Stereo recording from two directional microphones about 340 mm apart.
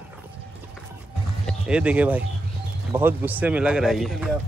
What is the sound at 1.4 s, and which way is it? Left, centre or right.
Speech, centre.